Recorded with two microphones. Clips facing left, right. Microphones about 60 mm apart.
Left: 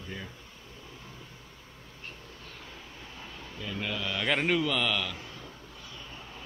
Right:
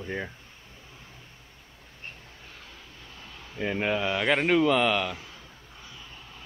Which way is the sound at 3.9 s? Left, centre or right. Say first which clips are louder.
Right 7 dB; right.